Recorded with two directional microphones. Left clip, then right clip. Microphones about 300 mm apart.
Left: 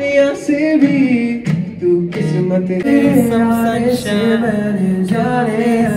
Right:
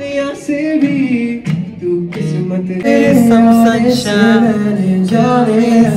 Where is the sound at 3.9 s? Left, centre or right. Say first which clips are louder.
Right 4 dB; right.